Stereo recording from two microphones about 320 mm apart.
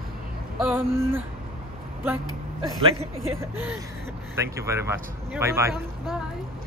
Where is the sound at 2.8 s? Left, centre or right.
Centre.